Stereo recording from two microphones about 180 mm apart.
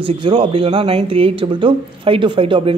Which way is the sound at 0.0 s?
30° right (ahead or behind).